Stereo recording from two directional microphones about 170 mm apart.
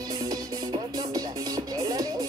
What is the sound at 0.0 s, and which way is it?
Music, 25° right (ahead or behind).